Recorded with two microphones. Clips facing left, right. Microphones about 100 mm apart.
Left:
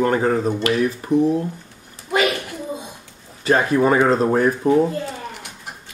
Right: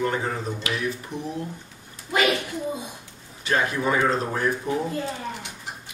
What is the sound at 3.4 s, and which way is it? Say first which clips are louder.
Speech: left 8 dB; 40° left (ahead or behind).